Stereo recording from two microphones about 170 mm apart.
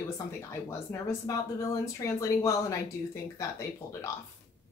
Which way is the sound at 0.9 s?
20° left (ahead or behind).